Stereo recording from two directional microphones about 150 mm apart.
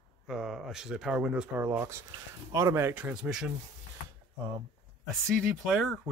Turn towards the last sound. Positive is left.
turn(degrees=0)  # may be behind; listen again after turning